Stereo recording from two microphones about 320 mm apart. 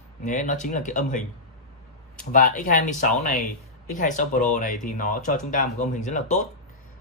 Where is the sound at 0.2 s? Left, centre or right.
Left.